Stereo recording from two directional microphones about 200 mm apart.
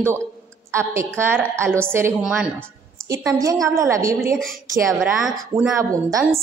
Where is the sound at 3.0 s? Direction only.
15° right (ahead or behind).